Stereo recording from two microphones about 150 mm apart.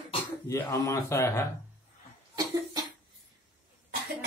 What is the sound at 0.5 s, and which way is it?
Speech, 20° left (ahead or behind).